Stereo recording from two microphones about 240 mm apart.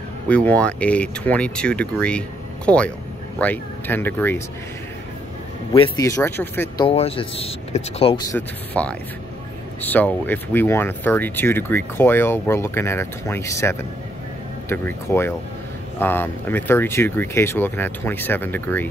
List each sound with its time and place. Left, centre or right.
0.3 s speech: centre
5.7 s speech: centre
6.9 s speech: left
8.4 s speech: centre